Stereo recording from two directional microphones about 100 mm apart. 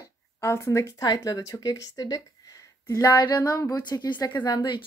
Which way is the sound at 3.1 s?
45° left (ahead or behind).